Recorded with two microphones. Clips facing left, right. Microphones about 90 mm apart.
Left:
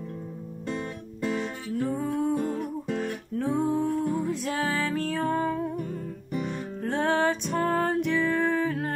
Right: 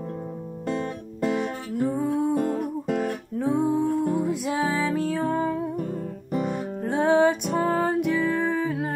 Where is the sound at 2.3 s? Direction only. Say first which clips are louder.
Right 4 dB; 45° right (ahead or behind).